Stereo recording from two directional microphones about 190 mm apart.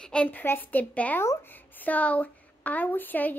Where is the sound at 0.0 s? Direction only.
5° left (ahead or behind).